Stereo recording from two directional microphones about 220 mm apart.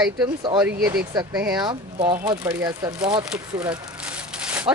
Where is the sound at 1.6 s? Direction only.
30° right (ahead or behind).